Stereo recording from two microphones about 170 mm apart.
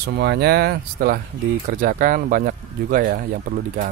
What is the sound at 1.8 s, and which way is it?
Speech, 55° right (ahead or behind).